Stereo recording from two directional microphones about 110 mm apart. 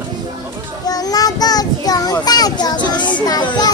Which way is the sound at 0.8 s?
35° left (ahead or behind).